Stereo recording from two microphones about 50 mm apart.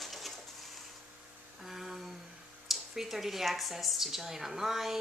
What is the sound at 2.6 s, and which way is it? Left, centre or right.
A woman's voice, centre.